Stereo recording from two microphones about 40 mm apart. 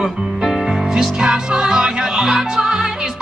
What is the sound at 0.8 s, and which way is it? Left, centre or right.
Music, centre.